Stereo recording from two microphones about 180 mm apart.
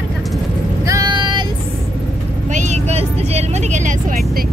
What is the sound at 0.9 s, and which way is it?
Vehicle, 20° right (ahead or behind).